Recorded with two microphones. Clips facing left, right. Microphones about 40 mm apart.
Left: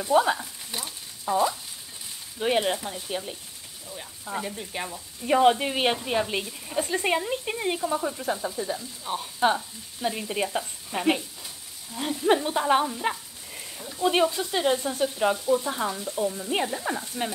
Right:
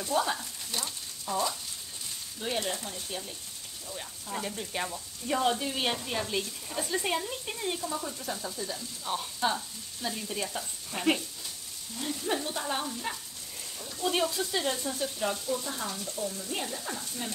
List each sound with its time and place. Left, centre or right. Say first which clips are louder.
0.0 s frying: left 7 dB; left
2.3 s speech: left 9 dB; left
2.7 s speech: left 6 dB; left
4.3 s frying: left 3 dB; centre
5.2 s speech: left 8 dB; left
9.0 s speech: left 1 dB; centre
10.0 s speech: left 7 dB; left
10.6 s frying: left 4 dB; centre
11.9 s speech: left 9 dB; left
13.1 s speech: left 4 dB; centre